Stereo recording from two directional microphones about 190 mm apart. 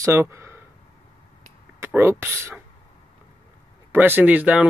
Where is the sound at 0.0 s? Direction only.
15° right (ahead or behind).